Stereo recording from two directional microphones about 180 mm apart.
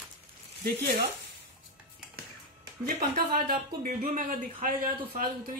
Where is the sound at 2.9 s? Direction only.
55° right (ahead or behind).